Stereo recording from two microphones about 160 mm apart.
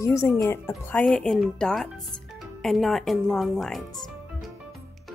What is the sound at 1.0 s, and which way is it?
Speech, 5° left (ahead or behind).